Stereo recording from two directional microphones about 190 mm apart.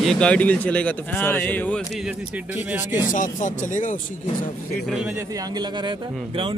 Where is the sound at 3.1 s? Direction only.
40° left (ahead or behind).